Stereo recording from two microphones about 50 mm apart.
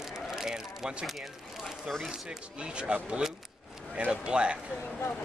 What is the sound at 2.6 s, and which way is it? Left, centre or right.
Speech, right.